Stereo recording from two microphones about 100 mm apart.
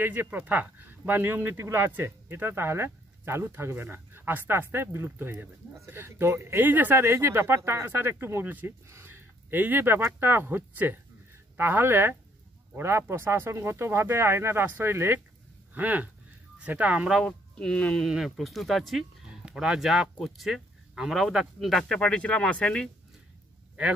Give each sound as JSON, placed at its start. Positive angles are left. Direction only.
{"t": 0.0, "sound": "speech", "side_deg": -20}
{"t": 17.3, "sound": "speech", "side_deg": 10}
{"t": 18.0, "sound": "speech", "side_deg": 0}